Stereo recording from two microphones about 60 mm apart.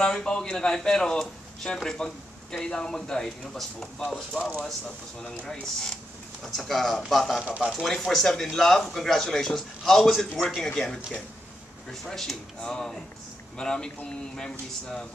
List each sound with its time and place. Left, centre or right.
0.0 s speech: centre
7.4 s speech: centre
7.8 s speech: centre
10.7 s speech: centre